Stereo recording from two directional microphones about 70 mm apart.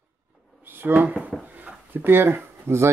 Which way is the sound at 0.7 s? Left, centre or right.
Right.